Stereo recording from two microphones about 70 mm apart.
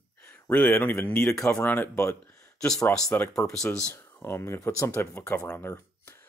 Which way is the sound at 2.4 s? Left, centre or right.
Centre.